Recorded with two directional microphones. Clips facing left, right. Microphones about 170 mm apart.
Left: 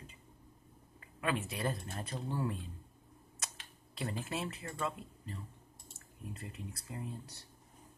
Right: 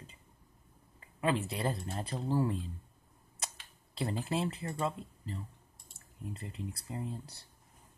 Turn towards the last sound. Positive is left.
turn(degrees=-30)  # may be behind; listen again after turning